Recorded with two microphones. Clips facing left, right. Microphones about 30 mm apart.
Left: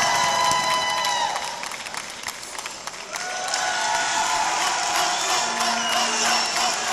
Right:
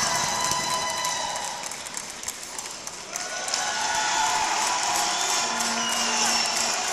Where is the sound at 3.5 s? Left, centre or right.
Centre.